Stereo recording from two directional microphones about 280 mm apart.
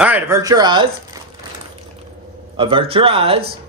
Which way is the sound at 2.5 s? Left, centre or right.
Centre.